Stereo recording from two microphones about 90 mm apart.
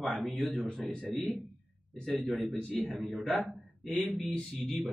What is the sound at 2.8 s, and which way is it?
A man's voice, centre (ahead or behind).